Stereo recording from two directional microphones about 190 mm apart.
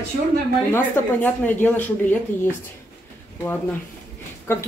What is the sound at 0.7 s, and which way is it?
Speech, 10° left (ahead or behind).